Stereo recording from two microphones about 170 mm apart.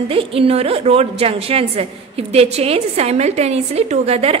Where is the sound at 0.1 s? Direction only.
35° right (ahead or behind).